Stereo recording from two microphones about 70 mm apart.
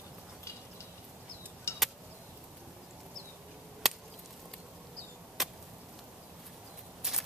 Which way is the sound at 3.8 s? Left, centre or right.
Centre.